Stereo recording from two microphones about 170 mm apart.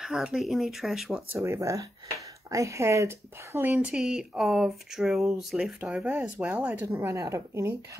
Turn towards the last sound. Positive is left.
turn(degrees=-15)  # may be behind; listen again after turning